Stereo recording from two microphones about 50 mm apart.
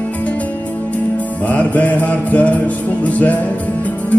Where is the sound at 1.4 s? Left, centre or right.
Left.